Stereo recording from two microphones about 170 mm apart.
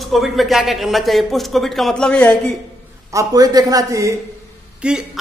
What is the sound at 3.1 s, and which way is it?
A man's voice, 20° right (ahead or behind).